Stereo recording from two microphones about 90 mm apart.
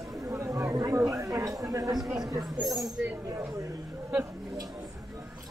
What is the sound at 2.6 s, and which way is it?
Speech, centre (ahead or behind).